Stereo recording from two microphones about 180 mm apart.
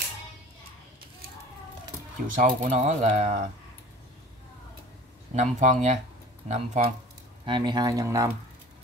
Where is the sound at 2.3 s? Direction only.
45° right (ahead or behind).